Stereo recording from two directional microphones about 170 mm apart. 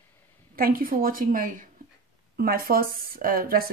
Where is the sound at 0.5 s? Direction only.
60° right (ahead or behind).